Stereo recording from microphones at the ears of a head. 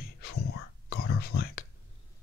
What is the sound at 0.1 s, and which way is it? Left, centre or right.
Whispering, left.